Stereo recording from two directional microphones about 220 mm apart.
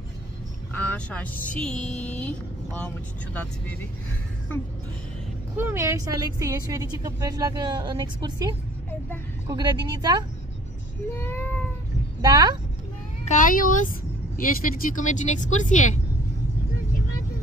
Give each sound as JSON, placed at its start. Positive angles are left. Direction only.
{"t": 0.7, "sound": "speech", "side_deg": 5}
{"t": 5.6, "sound": "a woman's voice", "side_deg": -10}
{"t": 11.1, "sound": "cat", "side_deg": 10}
{"t": 12.2, "sound": "a woman's voice", "side_deg": -15}
{"t": 13.2, "sound": "speech", "side_deg": 35}